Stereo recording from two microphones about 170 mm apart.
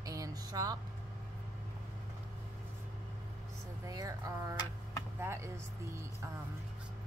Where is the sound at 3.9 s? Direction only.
20° right (ahead or behind).